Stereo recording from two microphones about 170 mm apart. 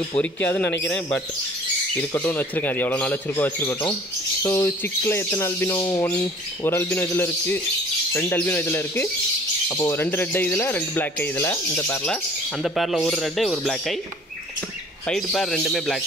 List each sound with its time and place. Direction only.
0.2 s speech: 10° left (ahead or behind)
12.6 s speech: centre (ahead or behind)
15.0 s speech: centre (ahead or behind)